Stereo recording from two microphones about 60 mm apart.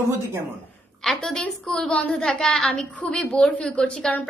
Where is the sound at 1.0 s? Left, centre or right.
Centre.